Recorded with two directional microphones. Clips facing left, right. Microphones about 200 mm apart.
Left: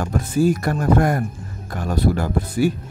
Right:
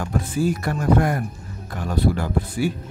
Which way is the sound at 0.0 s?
40° left (ahead or behind).